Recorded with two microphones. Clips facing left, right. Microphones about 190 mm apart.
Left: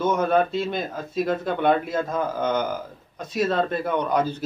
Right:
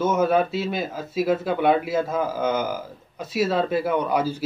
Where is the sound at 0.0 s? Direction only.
5° right (ahead or behind).